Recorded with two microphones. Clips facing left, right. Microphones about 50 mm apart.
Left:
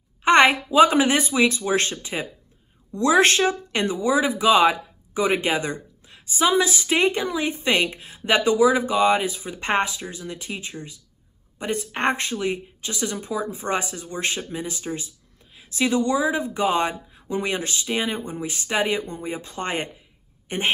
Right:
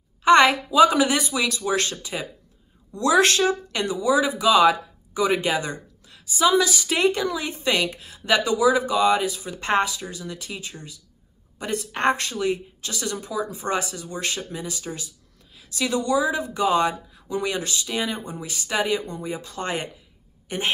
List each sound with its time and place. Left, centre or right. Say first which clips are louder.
0.2 s speech: even; left